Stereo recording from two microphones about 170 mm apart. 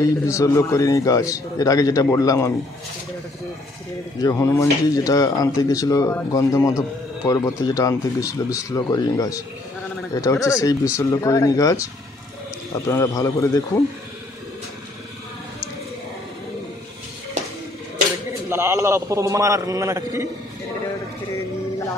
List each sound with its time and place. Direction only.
0.0 s a man's voice: 20° left (ahead or behind)
4.2 s a man's voice: 20° left (ahead or behind)
18.5 s a man's voice: 15° right (ahead or behind)